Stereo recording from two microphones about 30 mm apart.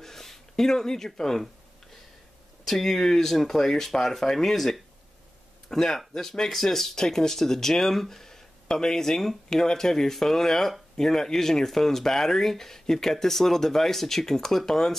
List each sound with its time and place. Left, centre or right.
0.0 s speech: centre
2.6 s speech: centre